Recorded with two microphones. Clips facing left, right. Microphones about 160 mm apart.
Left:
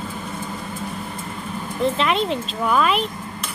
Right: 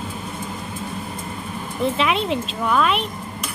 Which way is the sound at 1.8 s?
Centre (ahead or behind).